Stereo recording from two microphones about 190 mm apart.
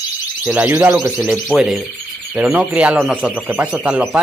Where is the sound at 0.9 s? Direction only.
5° right (ahead or behind).